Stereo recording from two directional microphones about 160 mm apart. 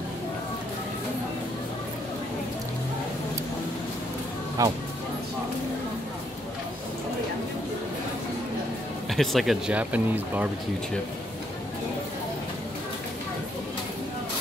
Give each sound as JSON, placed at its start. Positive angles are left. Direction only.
{"t": 4.6, "sound": "speech", "side_deg": -20}
{"t": 9.1, "sound": "speech", "side_deg": 0}